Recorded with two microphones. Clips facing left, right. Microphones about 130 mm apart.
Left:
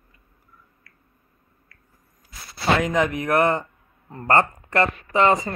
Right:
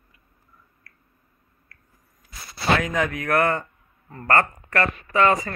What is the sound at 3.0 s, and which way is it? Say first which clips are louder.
A man's voice: left 2 dB; 20° left (ahead or behind).